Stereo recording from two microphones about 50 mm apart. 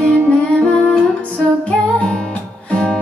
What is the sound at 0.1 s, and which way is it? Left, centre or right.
Music, centre.